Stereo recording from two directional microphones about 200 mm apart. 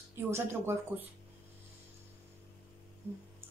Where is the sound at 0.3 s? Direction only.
10° right (ahead or behind).